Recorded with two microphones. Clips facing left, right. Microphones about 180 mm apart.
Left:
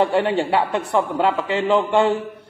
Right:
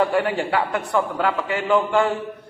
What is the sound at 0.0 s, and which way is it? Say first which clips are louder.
A man's voice: left 2 dB; 25° left (ahead or behind).